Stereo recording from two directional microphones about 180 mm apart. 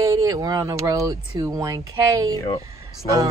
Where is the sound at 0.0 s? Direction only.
15° right (ahead or behind).